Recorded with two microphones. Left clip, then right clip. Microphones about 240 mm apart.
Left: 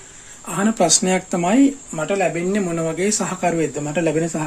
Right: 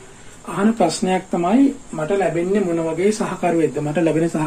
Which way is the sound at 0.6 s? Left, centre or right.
Left.